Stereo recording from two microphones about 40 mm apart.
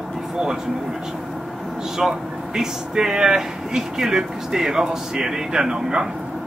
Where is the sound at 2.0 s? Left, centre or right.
Centre.